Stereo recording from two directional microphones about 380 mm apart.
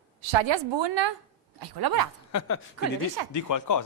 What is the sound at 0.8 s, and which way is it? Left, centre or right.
Speech, right.